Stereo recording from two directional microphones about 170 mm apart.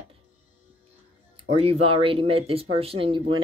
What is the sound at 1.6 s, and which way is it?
Speech, 35° right (ahead or behind).